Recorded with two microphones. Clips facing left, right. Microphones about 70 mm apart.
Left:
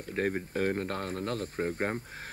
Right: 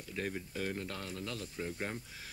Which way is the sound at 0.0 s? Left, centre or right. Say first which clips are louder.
Left 8 dB; left.